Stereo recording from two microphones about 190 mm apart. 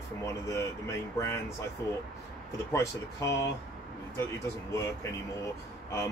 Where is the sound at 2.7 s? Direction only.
15° left (ahead or behind).